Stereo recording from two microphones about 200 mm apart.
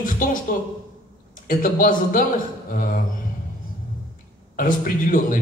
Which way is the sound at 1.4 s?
45° left (ahead or behind).